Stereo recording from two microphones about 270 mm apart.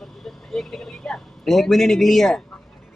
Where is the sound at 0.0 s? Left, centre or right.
Centre.